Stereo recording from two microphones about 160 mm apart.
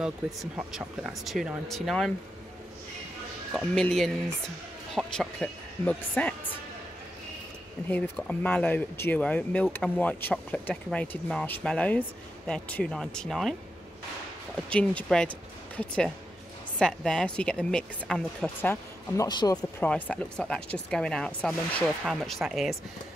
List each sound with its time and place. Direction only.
0.0 s speech: 5° right (ahead or behind)
3.5 s speech: 5° left (ahead or behind)
7.9 s speech: 10° left (ahead or behind)
14.7 s speech: 5° left (ahead or behind)
18.6 s speech: 15° left (ahead or behind)
19.2 s speech: 25° left (ahead or behind)
19.8 s speech: 10° left (ahead or behind)